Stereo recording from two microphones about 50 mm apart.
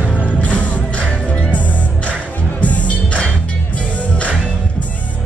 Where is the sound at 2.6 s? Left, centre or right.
Left.